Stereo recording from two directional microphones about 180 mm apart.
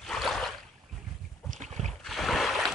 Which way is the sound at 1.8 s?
Centre (ahead or behind).